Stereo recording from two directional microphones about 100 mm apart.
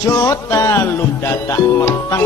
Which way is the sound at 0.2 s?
30° left (ahead or behind).